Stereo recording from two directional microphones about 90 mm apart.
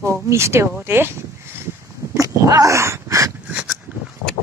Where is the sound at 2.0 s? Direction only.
30° right (ahead or behind).